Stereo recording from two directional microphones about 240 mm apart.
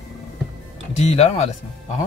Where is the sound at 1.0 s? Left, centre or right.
Left.